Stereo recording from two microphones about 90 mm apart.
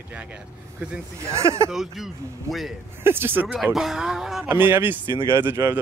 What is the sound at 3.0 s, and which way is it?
Speech, 25° right (ahead or behind).